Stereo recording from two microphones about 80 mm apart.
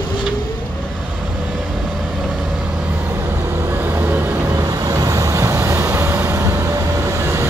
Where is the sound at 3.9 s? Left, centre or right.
Right.